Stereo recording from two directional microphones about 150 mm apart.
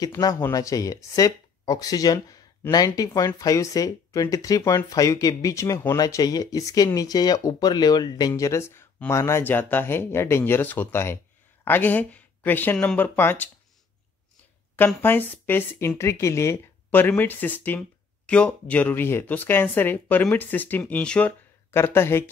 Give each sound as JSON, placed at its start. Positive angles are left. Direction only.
{"t": 0.0, "sound": "speech", "side_deg": 25}
{"t": 15.0, "sound": "speech", "side_deg": 15}